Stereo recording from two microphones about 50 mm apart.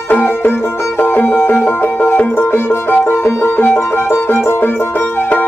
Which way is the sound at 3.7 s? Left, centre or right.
Left.